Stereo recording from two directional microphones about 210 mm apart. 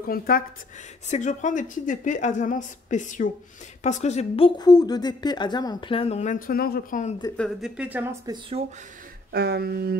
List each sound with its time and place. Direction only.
0.0 s a woman's voice: 45° left (ahead or behind)
7.3 s speech: centre (ahead or behind)
8.3 s speech: 25° right (ahead or behind)
9.3 s a sound: 50° right (ahead or behind)